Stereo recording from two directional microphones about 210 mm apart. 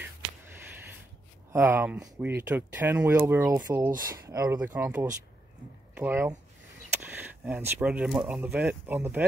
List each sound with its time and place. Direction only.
1.5 s speech: 10° right (ahead or behind)